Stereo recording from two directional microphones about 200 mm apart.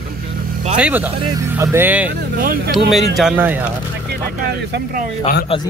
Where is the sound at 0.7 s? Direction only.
5° right (ahead or behind).